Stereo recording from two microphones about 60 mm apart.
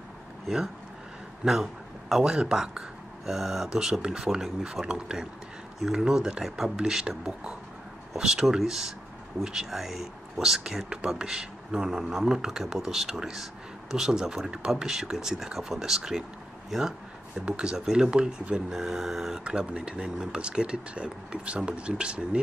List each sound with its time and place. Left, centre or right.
1.4 s speech: centre
17.5 s speech: centre